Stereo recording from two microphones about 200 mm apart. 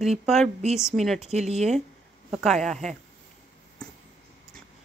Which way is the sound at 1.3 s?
35° right (ahead or behind).